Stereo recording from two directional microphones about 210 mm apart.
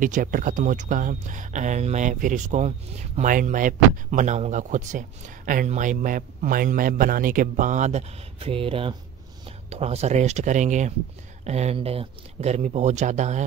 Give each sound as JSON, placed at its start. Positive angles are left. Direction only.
{"t": 0.0, "sound": "speech", "side_deg": -40}